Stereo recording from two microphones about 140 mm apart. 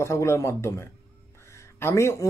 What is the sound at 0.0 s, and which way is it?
Speech, 20° left (ahead or behind).